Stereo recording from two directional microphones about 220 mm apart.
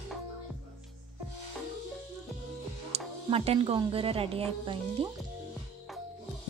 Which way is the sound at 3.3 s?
25° right (ahead or behind).